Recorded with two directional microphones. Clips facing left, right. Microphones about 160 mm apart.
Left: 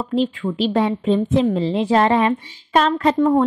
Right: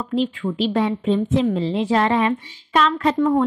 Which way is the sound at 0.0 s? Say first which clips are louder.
Left 2 dB; 35° left (ahead or behind).